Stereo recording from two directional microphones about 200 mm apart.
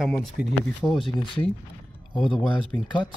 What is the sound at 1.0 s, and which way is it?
Speech, 25° left (ahead or behind).